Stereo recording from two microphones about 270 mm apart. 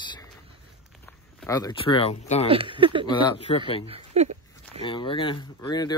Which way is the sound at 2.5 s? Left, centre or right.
Centre.